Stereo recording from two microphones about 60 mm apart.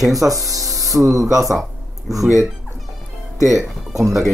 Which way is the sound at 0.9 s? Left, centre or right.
Centre.